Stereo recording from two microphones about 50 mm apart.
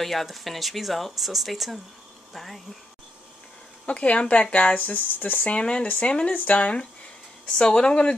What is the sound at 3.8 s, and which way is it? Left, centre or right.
Speech, left.